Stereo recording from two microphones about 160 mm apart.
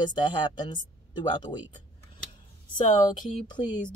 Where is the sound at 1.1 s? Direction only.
30° left (ahead or behind).